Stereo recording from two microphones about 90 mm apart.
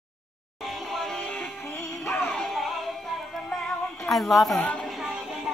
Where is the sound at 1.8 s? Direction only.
25° left (ahead or behind).